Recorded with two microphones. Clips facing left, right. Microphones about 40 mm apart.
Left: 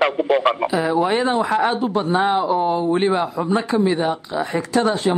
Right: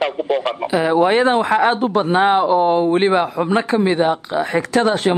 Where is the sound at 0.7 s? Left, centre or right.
Right.